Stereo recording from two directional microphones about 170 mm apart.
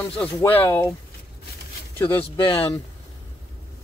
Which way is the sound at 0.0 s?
5° left (ahead or behind).